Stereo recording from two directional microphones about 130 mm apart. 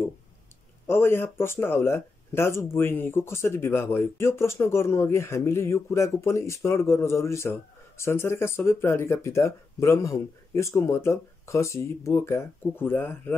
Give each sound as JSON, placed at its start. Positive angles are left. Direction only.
{"t": 0.8, "sound": "speech", "side_deg": 15}